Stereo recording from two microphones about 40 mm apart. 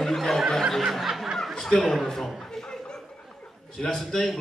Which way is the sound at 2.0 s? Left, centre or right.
Centre.